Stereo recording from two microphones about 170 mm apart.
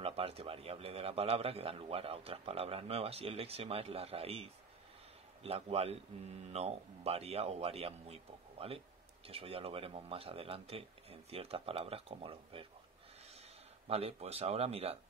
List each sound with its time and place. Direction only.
0.0 s a man's voice: 35° right (ahead or behind)
13.8 s a man's voice: 35° right (ahead or behind)